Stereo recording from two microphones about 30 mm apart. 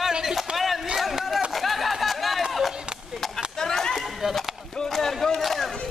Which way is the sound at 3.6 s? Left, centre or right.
Centre.